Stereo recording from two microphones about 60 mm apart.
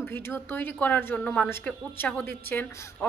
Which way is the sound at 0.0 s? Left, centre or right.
Left.